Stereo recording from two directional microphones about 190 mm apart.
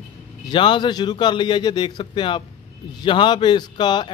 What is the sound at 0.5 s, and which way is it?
Speech, 25° left (ahead or behind).